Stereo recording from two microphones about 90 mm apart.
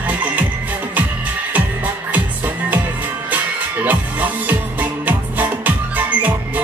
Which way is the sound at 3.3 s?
20° right (ahead or behind).